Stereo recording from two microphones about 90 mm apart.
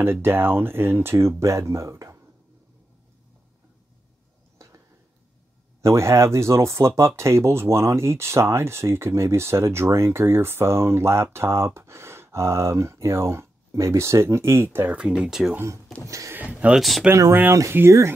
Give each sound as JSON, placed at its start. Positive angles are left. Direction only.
{"t": 0.0, "sound": "speech", "side_deg": -25}
{"t": 4.6, "sound": "a sound", "side_deg": -35}
{"t": 5.8, "sound": "speech", "side_deg": -30}
{"t": 15.0, "sound": "speech", "side_deg": -10}
{"t": 15.5, "sound": "speech", "side_deg": -30}
{"t": 16.3, "sound": "speech", "side_deg": -15}
{"t": 17.1, "sound": "speech", "side_deg": -30}